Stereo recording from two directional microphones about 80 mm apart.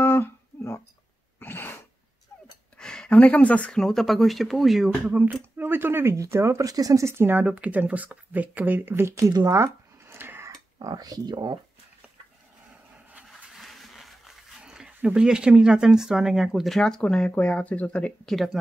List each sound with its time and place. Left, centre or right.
0.0 s a sound: left
1.4 s sneeze: left
2.8 s speech: centre
3.8 s speech: centre
5.0 s speech: centre; by 7.1 s right
7.1 s speech: right
9.5 s a sound: right
10.8 s speech: right
13.3 s a sound: centre
17.0 s speech: centre
18.3 s speech: centre